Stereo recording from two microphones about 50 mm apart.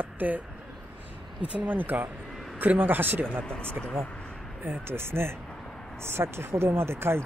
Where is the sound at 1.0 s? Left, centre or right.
Right.